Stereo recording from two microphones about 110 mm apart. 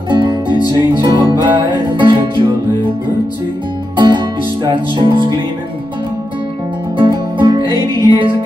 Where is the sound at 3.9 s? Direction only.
45° right (ahead or behind).